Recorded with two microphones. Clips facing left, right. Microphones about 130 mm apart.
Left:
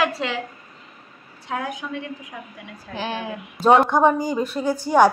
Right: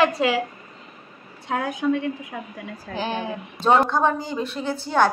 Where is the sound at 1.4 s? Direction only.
30° right (ahead or behind).